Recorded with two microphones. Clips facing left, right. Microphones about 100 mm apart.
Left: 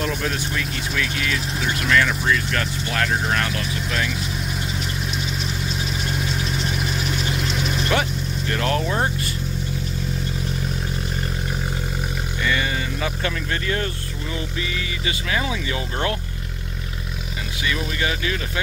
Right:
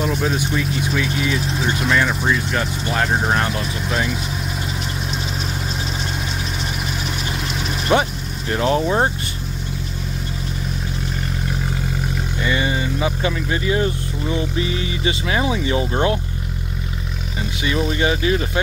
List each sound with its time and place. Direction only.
0.0 s speech: 15° right (ahead or behind)
7.9 s speech: 20° right (ahead or behind)
12.4 s speech: 20° right (ahead or behind)
17.6 s speech: 35° right (ahead or behind)